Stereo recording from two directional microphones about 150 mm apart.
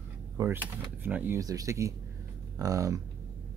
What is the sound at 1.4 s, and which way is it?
Speech, 25° right (ahead or behind).